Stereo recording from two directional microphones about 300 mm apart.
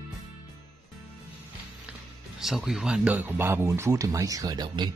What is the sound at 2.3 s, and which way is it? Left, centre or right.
Speech, centre.